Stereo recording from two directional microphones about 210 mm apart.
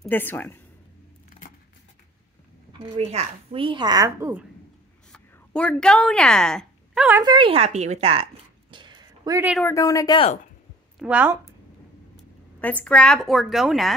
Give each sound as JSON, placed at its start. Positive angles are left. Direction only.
{"t": 0.0, "sound": "speech", "side_deg": 10}
{"t": 3.0, "sound": "a woman's voice", "side_deg": -30}
{"t": 5.1, "sound": "speech", "side_deg": 5}
{"t": 7.2, "sound": "speech", "side_deg": -25}
{"t": 9.6, "sound": "speech", "side_deg": 15}
{"t": 11.0, "sound": "a woman's voice", "side_deg": -5}
{"t": 12.5, "sound": "a woman's voice", "side_deg": 5}